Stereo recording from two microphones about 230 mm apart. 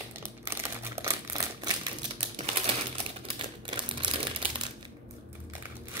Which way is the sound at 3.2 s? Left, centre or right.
Right.